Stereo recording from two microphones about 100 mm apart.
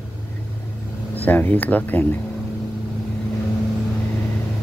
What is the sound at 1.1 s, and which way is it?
Speech, 20° left (ahead or behind).